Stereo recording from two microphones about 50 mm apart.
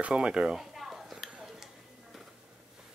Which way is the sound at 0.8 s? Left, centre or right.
Centre.